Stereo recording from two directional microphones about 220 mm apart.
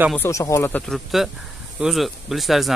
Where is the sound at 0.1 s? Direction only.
10° left (ahead or behind).